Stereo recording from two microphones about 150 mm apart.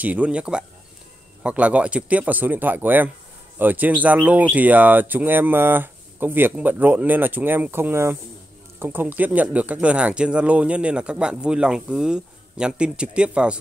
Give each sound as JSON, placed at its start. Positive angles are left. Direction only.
{"t": 0.0, "sound": "speech", "side_deg": -10}